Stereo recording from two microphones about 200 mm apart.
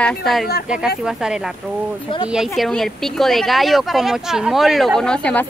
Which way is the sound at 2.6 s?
Centre (ahead or behind).